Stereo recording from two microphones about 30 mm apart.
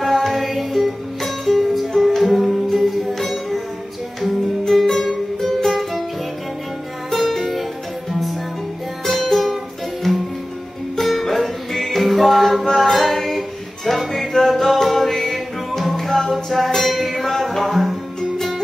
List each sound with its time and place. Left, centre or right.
0.0 s music: centre
7.2 s music: centre
12.6 s music: centre
12.9 s music: centre